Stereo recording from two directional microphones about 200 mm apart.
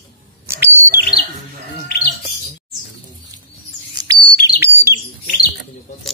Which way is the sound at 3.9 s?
20° right (ahead or behind).